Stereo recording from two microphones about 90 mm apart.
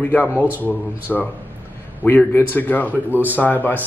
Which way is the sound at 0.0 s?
20° left (ahead or behind).